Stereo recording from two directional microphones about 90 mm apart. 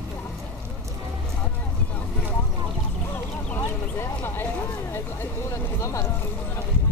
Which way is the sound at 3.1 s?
25° left (ahead or behind).